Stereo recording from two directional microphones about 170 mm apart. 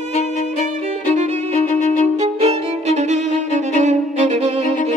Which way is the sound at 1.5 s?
45° left (ahead or behind).